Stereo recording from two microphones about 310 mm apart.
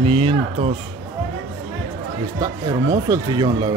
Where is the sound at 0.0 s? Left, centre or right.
Centre.